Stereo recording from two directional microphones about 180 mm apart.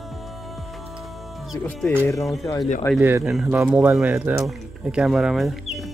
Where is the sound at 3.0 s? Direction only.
15° right (ahead or behind).